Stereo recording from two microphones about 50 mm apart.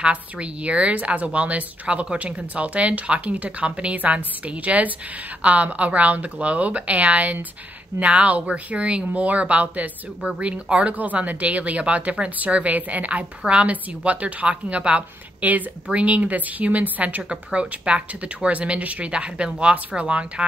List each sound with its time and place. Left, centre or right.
0.0 s speech: right
15.4 s a woman's voice: right
17.2 s speech: centre